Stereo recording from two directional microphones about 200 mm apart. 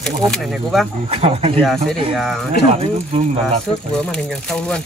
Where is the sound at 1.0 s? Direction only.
30° right (ahead or behind).